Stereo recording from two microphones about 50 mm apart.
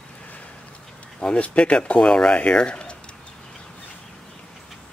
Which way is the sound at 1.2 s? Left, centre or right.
Left.